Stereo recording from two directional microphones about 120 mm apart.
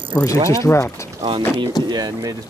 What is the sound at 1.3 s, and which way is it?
Speech, 45° right (ahead or behind).